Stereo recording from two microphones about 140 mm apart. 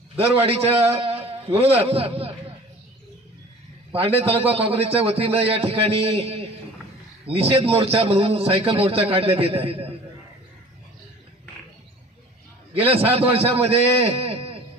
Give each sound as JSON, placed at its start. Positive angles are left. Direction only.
{"t": 0.2, "sound": "a man's voice", "side_deg": -45}
{"t": 1.2, "sound": "a sound", "side_deg": -45}
{"t": 3.9, "sound": "a man's voice", "side_deg": -45}
{"t": 12.7, "sound": "a man's voice", "side_deg": -45}